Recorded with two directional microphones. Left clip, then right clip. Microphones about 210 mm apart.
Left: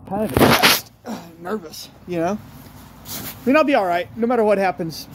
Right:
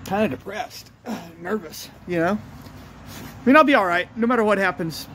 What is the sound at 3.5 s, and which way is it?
Speech, 15° right (ahead or behind).